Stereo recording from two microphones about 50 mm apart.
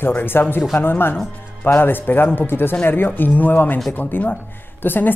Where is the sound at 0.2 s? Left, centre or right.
Left.